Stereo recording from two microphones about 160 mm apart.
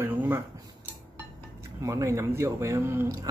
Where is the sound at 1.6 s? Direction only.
20° right (ahead or behind).